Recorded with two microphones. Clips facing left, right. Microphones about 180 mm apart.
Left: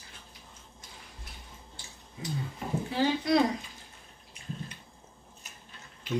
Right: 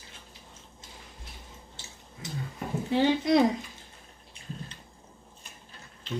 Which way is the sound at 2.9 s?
20° right (ahead or behind).